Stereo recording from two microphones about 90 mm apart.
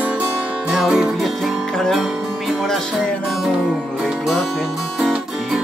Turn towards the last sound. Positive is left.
turn(degrees=-5)  # may be behind; listen again after turning